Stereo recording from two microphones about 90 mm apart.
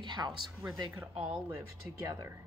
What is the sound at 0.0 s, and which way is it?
Speech, 55° right (ahead or behind).